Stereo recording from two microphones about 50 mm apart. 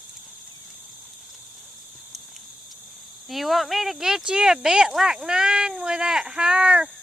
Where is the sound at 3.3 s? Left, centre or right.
Centre; by 6.9 s right.